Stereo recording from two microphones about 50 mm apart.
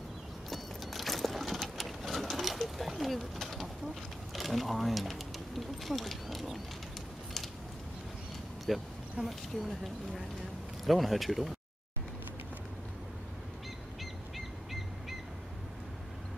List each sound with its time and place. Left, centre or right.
0.5 s sewing machine: centre
2.8 s pigeon: centre
4.3 s speech: centre
5.9 s a sound: centre
8.7 s speech: centre
9.2 s speech: right
10.9 s speech: centre
14.3 s bird: centre